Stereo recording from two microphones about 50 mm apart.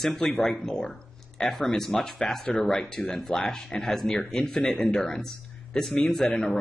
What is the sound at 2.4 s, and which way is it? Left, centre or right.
Speech, centre.